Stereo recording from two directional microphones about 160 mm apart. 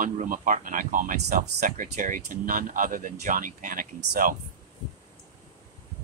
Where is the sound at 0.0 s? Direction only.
55° right (ahead or behind).